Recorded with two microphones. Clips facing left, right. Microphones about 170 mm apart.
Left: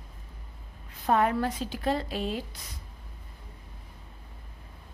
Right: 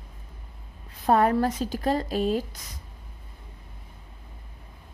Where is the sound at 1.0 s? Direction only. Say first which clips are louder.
Right 4 dB; 35° right (ahead or behind).